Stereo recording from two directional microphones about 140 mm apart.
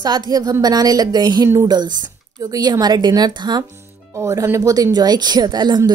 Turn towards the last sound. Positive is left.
turn(degrees=-30)  # may be behind; listen again after turning